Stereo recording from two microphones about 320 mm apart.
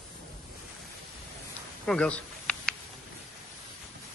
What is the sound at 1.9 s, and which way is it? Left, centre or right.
Snake, centre.